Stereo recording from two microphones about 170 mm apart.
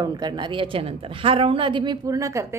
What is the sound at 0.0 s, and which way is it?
A woman's voice, 25° right (ahead or behind).